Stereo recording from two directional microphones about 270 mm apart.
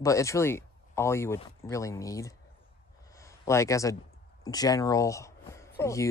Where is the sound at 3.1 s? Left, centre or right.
Centre.